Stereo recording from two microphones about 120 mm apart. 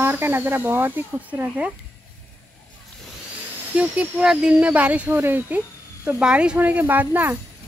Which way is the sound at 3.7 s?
10° right (ahead or behind).